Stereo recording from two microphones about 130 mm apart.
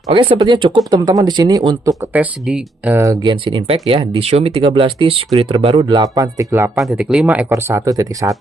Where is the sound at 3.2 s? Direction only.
40° right (ahead or behind).